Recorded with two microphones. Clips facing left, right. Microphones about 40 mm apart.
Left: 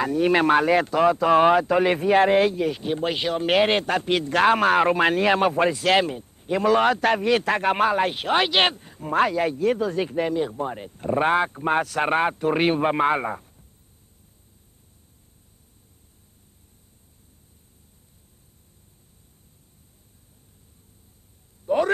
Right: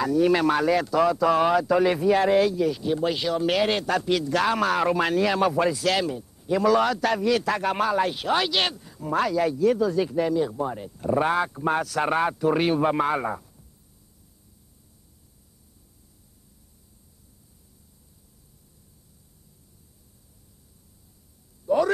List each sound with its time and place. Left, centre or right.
0.0 s speech: left
21.6 s speech: left